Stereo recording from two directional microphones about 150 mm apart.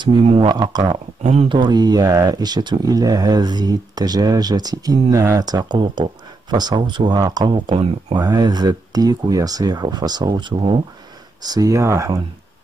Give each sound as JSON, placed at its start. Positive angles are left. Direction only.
{"t": 0.5, "sound": "speech", "side_deg": -30}
{"t": 1.2, "sound": "speech", "side_deg": -50}
{"t": 1.5, "sound": "speech", "side_deg": -30}
{"t": 11.4, "sound": "speech", "side_deg": -25}